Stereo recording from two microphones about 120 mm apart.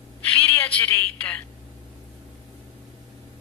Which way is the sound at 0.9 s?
15° left (ahead or behind).